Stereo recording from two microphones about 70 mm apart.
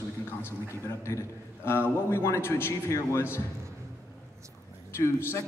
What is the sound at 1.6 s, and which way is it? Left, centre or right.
A man's voice, left.